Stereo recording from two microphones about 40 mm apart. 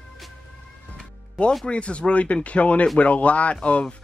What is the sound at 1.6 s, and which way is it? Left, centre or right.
Speech, left.